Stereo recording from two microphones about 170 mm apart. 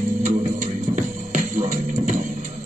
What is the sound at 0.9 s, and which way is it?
Music, 45° right (ahead or behind).